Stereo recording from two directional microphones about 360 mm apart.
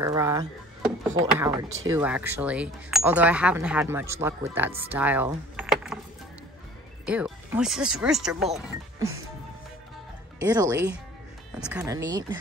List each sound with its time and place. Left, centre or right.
0.0 s a sound: centre
1.4 s speech: centre
7.1 s speech: centre
10.4 s speech: centre